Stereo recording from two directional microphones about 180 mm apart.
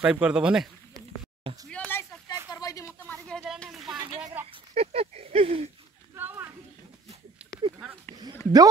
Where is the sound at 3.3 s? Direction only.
5° left (ahead or behind).